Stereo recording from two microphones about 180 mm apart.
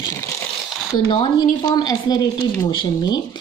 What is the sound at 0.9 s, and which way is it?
Speech, 25° left (ahead or behind).